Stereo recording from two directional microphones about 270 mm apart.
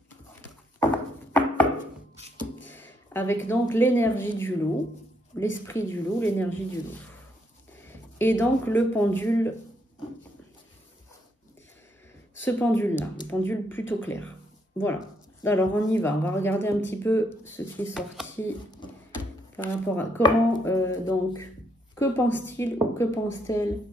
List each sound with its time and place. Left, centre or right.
0.7 s a sound: centre
2.1 s beatboxing: right
2.6 s a sound: centre
3.4 s speech: centre
5.4 s speech: centre
7.9 s speech: centre
12.4 s speech: centre
15.4 s speech: centre
19.5 s speech: centre